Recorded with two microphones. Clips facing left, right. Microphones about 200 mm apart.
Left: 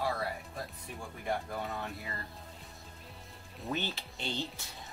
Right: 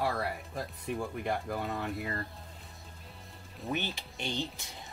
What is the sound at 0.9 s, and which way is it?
Speech, 70° right (ahead or behind).